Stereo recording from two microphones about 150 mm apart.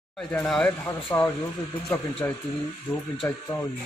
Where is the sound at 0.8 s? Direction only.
20° left (ahead or behind).